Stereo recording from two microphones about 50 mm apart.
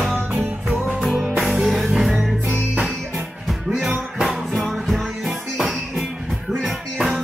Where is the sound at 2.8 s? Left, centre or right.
Centre.